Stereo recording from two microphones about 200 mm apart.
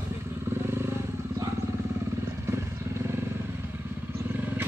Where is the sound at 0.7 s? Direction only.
10° right (ahead or behind).